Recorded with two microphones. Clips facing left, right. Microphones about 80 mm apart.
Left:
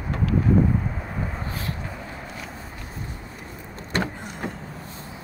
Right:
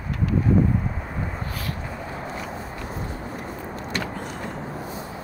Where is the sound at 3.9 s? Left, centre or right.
Left.